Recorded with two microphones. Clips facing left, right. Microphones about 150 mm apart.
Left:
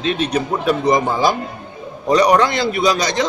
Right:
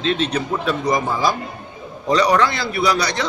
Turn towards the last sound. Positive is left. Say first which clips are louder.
# left 3 dB
turn(degrees=20)  # may be behind; listen again after turning